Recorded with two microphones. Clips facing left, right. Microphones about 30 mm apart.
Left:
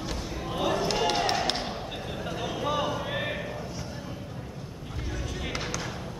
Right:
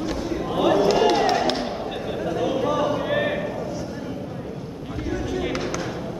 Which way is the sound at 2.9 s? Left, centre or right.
Centre.